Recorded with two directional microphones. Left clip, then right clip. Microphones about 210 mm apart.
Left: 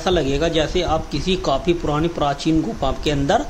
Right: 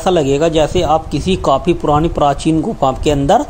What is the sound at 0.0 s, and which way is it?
A man's voice, 30° right (ahead or behind).